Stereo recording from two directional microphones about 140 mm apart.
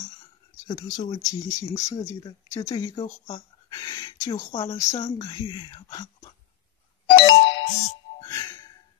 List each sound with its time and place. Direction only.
0.7 s speech: 25° left (ahead or behind)
7.2 s music: 35° left (ahead or behind)
8.2 s music: 25° left (ahead or behind)